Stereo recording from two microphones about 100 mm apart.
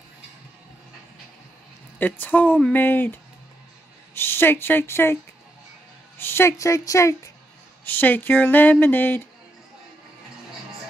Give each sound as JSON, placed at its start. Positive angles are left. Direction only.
{"t": 2.0, "sound": "a woman's voice", "side_deg": 15}
{"t": 7.8, "sound": "speech", "side_deg": 20}